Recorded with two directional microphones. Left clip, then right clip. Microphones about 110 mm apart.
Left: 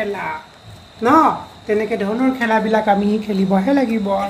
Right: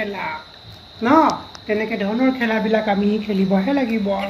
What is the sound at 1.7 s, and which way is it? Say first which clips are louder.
Speech: left 3 dB; 15° left (ahead or behind).